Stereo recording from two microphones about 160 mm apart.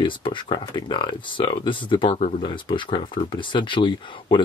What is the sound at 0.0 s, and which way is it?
Speech, 30° left (ahead or behind).